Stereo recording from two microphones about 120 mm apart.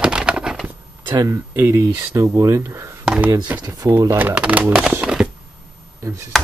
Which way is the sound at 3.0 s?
5° right (ahead or behind).